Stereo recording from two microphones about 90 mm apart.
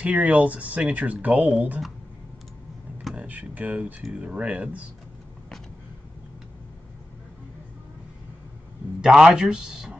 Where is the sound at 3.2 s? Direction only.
20° right (ahead or behind).